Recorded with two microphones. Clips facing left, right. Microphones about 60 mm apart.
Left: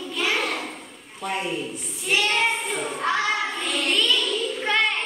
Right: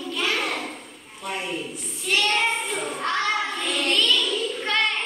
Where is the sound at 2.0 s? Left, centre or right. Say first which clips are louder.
Even; centre.